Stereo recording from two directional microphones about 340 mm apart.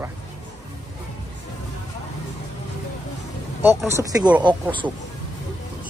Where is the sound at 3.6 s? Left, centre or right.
Centre.